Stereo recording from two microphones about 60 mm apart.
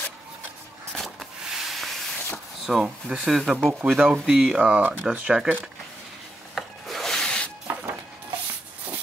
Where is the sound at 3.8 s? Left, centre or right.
Right.